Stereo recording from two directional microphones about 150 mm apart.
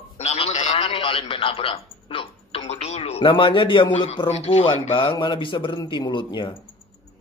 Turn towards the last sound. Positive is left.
turn(degrees=30)  # may be behind; listen again after turning